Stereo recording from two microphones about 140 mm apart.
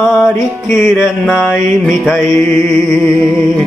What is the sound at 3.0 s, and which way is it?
Music, 15° left (ahead or behind).